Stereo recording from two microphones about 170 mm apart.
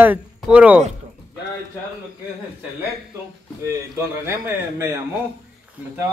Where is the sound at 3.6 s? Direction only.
15° right (ahead or behind).